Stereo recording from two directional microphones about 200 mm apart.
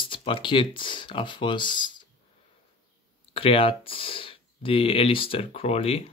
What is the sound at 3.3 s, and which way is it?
Speech, 25° left (ahead or behind).